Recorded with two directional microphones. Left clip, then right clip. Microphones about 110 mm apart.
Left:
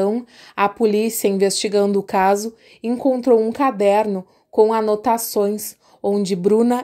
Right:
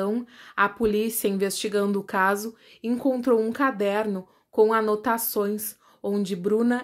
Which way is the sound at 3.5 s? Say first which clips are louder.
Left 8 dB; 45° left (ahead or behind).